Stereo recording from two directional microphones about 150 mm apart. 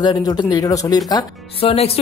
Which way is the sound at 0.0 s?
30° left (ahead or behind).